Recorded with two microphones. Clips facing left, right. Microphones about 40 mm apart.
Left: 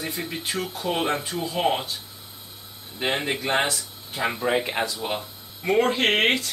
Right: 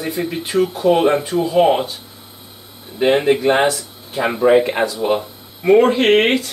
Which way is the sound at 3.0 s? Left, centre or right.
Centre.